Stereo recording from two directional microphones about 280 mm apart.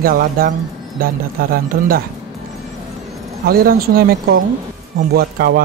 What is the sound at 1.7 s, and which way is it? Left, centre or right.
Speech, right.